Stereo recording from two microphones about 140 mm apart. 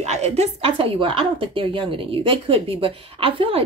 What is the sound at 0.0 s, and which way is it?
A woman's voice, 50° right (ahead or behind).